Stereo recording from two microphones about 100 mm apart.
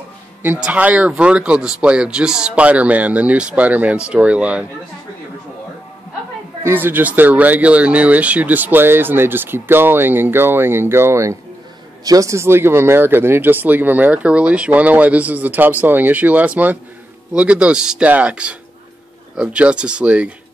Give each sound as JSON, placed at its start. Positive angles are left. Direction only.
{"t": 0.6, "sound": "speech", "side_deg": -15}
{"t": 6.6, "sound": "speech", "side_deg": -20}